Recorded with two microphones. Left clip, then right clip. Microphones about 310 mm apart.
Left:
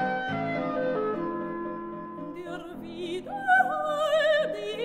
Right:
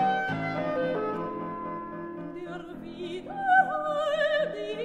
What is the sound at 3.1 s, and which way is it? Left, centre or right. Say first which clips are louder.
Music: right 1 dB; left.